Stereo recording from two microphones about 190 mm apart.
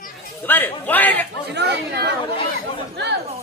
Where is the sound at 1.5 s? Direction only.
60° right (ahead or behind).